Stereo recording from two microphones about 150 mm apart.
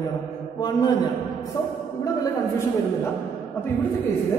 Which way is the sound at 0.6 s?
25° left (ahead or behind).